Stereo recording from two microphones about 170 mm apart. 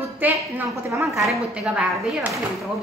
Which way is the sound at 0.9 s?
Centre (ahead or behind).